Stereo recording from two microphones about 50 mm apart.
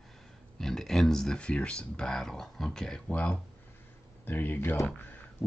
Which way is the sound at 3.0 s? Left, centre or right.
Left.